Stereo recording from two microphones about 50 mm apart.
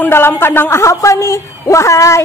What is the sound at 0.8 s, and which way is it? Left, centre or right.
A woman's voice, left.